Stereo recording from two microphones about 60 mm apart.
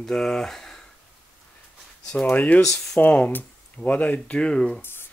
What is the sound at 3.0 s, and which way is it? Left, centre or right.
Speech, left.